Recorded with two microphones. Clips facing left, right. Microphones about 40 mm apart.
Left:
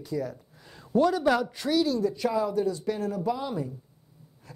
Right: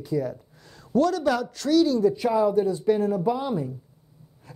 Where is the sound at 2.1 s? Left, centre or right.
Centre.